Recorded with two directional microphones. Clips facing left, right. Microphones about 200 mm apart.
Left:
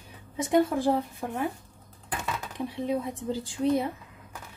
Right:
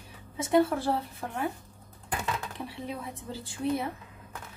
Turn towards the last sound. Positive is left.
turn(degrees=20)  # may be behind; listen again after turning